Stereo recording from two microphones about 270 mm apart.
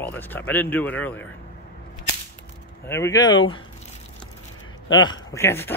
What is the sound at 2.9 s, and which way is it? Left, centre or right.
Speech, centre.